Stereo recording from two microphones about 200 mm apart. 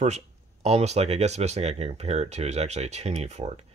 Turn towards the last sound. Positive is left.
turn(degrees=-35)  # may be behind; listen again after turning